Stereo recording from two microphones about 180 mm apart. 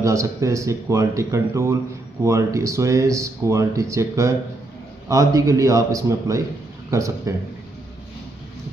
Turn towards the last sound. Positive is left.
turn(degrees=-15)  # may be behind; listen again after turning